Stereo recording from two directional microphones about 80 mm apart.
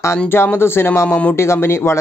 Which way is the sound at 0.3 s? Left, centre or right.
Left.